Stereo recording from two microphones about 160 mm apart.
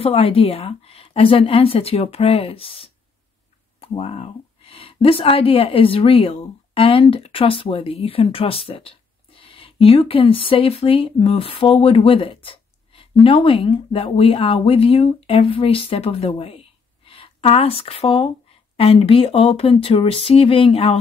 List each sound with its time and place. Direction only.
0.0 s a woman's voice: 35° left (ahead or behind)